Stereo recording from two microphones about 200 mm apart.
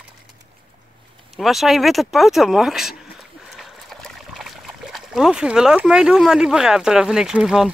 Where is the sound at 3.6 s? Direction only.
Centre (ahead or behind).